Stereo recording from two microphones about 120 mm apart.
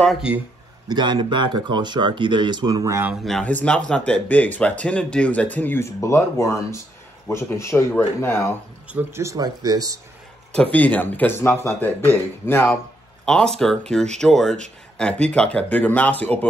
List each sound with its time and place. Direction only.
0.8 s speech: 35° right (ahead or behind)
3.3 s speech: centre (ahead or behind); by 8.5 s 20° left (ahead or behind)
8.9 s speech: 25° right (ahead or behind)
10.5 s speech: 10° left (ahead or behind)
13.2 s speech: 5° left (ahead or behind)